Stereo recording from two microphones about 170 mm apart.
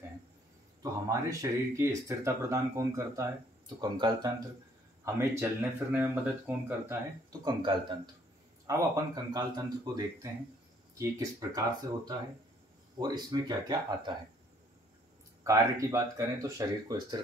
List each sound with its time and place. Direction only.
1.0 s speech: 20° right (ahead or behind)
7.4 s speech: 25° right (ahead or behind)
15.4 s speech: 15° right (ahead or behind)